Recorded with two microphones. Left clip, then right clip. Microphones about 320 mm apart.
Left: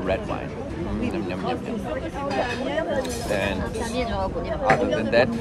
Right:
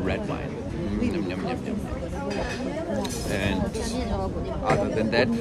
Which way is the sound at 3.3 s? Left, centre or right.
Centre.